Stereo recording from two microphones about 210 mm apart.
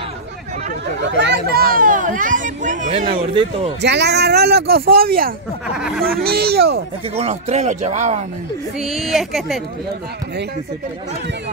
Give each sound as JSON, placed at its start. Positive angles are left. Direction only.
{"t": 1.0, "sound": "speech", "side_deg": -55}
{"t": 3.1, "sound": "speech", "side_deg": -25}
{"t": 3.8, "sound": "speech", "side_deg": -55}
{"t": 5.8, "sound": "a woman's voice", "side_deg": 0}
{"t": 6.2, "sound": "speech", "side_deg": -50}
{"t": 7.2, "sound": "speech", "side_deg": -30}
{"t": 8.7, "sound": "a woman's voice", "side_deg": 0}